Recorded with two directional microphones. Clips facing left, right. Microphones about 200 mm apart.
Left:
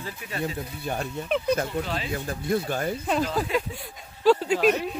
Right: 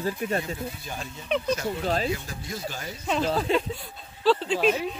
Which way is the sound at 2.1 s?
55° left (ahead or behind).